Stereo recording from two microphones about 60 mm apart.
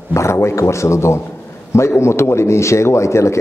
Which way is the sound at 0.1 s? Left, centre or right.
Left.